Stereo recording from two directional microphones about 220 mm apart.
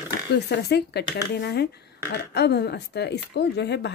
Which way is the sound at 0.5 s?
50° left (ahead or behind).